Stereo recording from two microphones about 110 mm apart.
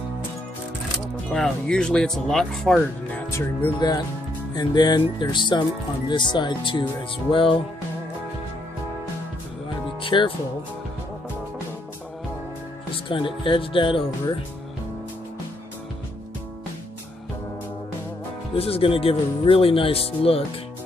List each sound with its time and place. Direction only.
1.3 s speech: 5° left (ahead or behind)
3.3 s speech: 25° left (ahead or behind)
4.6 s speech: 40° left (ahead or behind)
10.0 s speech: 50° left (ahead or behind)
12.9 s speech: 50° left (ahead or behind)
18.6 s speech: 60° left (ahead or behind)